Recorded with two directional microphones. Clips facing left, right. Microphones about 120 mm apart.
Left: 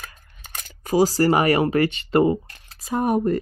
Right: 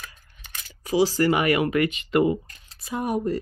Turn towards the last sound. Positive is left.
turn(degrees=50)  # may be behind; listen again after turning